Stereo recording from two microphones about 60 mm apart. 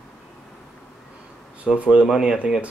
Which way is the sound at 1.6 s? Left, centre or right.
Centre.